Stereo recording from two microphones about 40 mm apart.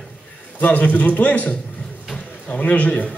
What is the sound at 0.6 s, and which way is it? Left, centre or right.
Speech, left.